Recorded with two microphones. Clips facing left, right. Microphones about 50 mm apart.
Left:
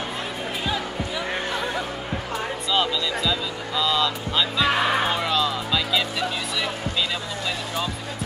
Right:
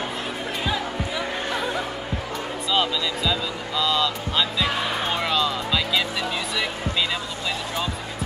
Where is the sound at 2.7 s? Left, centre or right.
Centre.